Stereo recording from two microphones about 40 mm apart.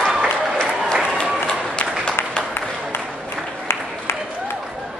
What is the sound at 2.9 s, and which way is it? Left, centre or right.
Applause, left.